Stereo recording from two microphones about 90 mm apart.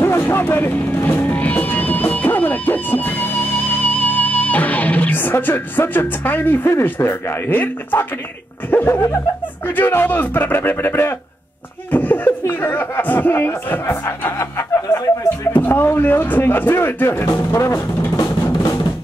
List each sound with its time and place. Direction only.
0.0 s music: 25° left (ahead or behind)
5.4 s speech: 20° left (ahead or behind)
18.4 s drum: 35° left (ahead or behind)